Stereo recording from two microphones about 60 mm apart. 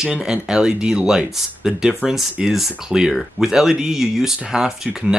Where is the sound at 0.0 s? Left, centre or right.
Centre.